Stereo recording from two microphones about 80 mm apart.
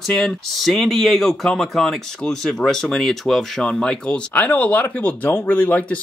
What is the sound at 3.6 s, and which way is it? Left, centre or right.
Speech, centre.